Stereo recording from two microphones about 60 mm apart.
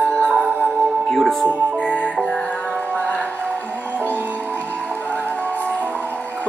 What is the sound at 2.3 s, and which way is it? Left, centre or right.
Music, centre.